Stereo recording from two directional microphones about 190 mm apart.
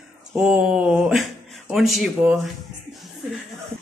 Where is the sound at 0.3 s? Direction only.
5° right (ahead or behind).